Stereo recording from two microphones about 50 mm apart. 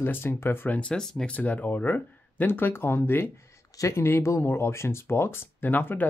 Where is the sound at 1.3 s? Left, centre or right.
Left.